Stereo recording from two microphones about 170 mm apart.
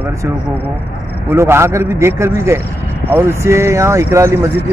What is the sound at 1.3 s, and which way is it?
Speech, 15° right (ahead or behind).